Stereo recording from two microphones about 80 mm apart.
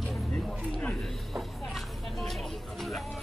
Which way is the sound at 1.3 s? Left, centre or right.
Centre.